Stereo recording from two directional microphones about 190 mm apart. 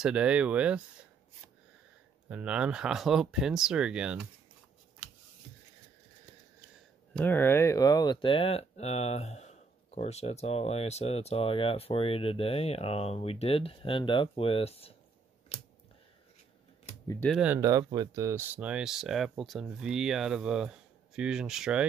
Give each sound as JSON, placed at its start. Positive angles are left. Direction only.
{"t": 0.0, "sound": "speech", "side_deg": -5}
{"t": 2.2, "sound": "speech", "side_deg": -5}
{"t": 7.2, "sound": "speech", "side_deg": 10}
{"t": 17.3, "sound": "speech", "side_deg": -5}
{"t": 17.6, "sound": "speech", "side_deg": -20}